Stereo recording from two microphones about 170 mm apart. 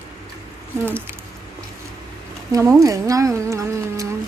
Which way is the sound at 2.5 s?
20° right (ahead or behind).